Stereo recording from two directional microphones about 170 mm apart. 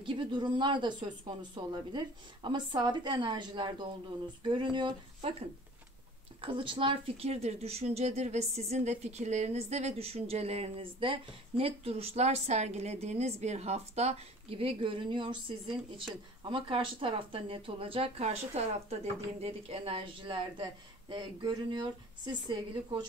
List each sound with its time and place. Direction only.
0.0 s speech: 30° right (ahead or behind)
6.4 s speech: 30° right (ahead or behind)